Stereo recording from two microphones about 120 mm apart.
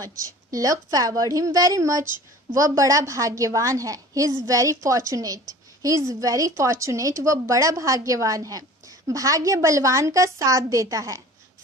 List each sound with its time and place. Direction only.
0.0 s a woman's voice: 30° right (ahead or behind)